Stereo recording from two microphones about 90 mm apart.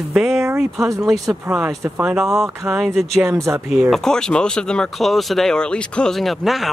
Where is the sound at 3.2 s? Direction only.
30° right (ahead or behind).